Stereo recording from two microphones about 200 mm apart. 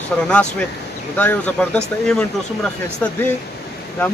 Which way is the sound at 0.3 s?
5° left (ahead or behind).